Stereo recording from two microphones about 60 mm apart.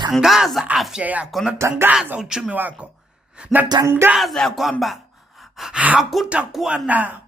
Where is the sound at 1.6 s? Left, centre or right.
Right.